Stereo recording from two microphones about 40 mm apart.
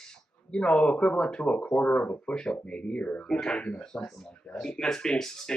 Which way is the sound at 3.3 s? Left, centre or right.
Centre.